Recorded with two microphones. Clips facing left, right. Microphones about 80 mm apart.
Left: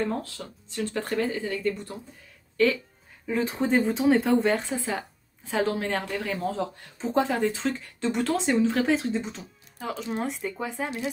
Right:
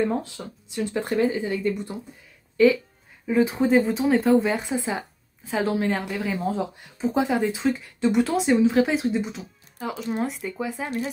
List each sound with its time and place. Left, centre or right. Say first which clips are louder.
0.0 s speech: right 4 dB; centre
5.4 s speech: right 2 dB; centre